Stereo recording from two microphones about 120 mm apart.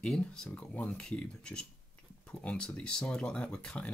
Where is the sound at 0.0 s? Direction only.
5° left (ahead or behind).